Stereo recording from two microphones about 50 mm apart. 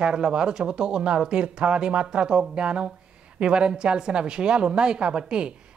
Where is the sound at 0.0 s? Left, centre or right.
Centre.